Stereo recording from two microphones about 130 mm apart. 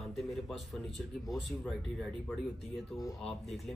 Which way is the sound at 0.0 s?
Centre (ahead or behind).